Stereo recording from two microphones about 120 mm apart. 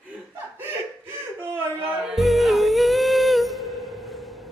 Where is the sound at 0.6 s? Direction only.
20° right (ahead or behind).